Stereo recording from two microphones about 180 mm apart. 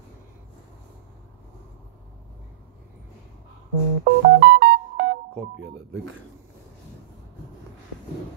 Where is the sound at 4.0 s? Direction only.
70° right (ahead or behind).